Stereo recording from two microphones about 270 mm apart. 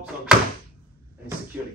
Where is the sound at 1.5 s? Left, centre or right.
Centre.